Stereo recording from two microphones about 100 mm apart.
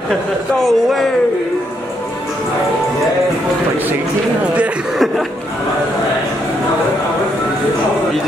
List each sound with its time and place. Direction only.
0.6 s speech: centre (ahead or behind)
4.6 s chuckle: 5° right (ahead or behind)